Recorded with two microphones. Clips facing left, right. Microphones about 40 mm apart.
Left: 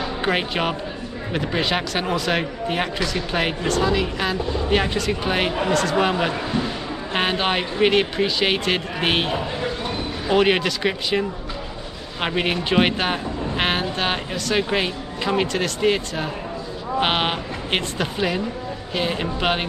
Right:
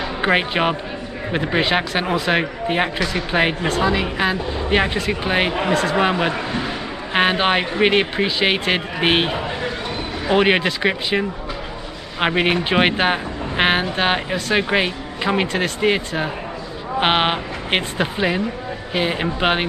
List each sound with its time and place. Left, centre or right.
0.2 s speech: right